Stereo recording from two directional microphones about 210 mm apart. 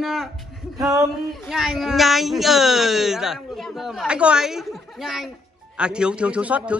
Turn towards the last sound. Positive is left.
turn(degrees=-5)  # may be behind; listen again after turning